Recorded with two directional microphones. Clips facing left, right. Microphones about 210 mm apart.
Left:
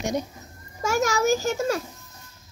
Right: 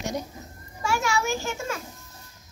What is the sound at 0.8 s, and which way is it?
A child's voice, 40° left (ahead or behind).